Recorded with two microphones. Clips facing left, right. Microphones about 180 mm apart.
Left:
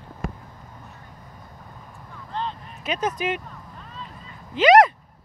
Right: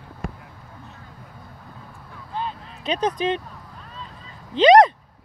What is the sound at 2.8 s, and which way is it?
Speech, 30° right (ahead or behind).